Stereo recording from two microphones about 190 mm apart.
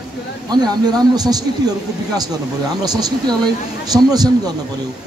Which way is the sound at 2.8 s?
20° right (ahead or behind).